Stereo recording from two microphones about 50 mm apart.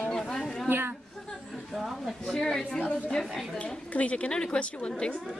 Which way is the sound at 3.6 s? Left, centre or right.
Left.